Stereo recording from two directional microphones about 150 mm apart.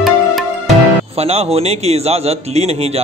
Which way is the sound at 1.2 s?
45° right (ahead or behind).